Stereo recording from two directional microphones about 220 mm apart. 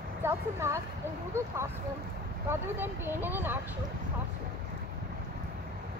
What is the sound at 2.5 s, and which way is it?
Speech, 10° right (ahead or behind).